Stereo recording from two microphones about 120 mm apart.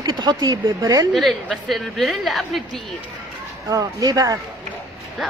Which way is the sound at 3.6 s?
30° right (ahead or behind).